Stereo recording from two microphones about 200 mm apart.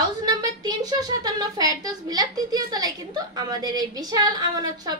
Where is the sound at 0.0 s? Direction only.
20° right (ahead or behind).